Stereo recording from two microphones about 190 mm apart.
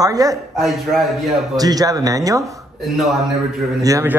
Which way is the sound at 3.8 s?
15° right (ahead or behind).